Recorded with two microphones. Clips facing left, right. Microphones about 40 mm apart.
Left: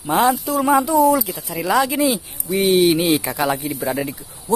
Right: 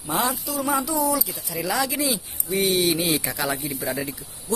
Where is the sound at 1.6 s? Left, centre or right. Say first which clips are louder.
Left 7 dB; left.